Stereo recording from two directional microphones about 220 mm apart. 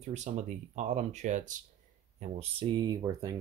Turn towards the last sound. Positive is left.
turn(degrees=-15)  # may be behind; listen again after turning